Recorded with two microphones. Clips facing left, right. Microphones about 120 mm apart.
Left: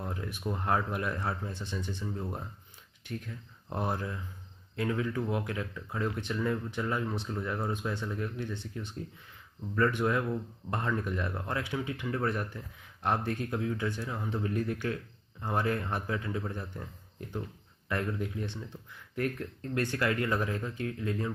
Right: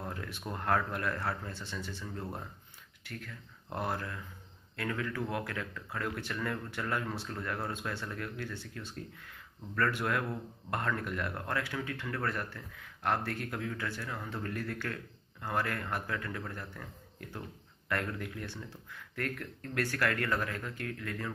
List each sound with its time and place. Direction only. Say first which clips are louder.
0.1 s speech: left 4 dB; 15° left (ahead or behind)